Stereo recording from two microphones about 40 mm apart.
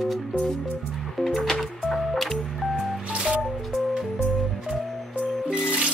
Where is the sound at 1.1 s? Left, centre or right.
Centre.